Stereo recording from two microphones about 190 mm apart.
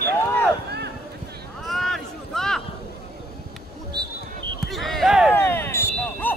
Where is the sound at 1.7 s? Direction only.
Centre (ahead or behind).